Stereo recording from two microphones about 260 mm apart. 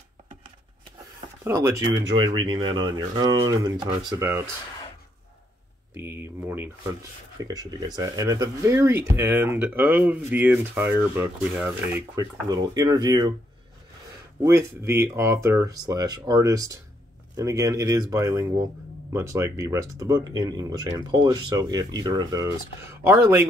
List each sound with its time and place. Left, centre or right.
1.4 s speech: centre
5.9 s speech: centre
14.4 s speech: centre